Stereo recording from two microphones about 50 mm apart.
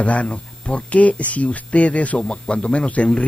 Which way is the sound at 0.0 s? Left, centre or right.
Left.